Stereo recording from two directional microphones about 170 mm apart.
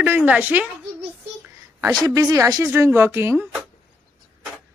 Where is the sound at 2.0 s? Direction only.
20° right (ahead or behind).